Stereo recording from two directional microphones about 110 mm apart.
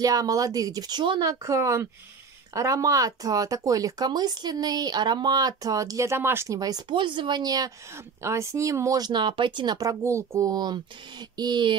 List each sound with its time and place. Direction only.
0.0 s speech: 30° right (ahead or behind)
1.2 s speech: 30° right (ahead or behind)
8.2 s speech: 25° right (ahead or behind); by 9.8 s 45° right (ahead or behind)
9.8 s speech: 30° right (ahead or behind)
10.5 s speech: 40° right (ahead or behind)